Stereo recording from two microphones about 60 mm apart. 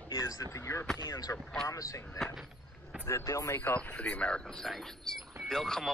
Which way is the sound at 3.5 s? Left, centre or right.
Left.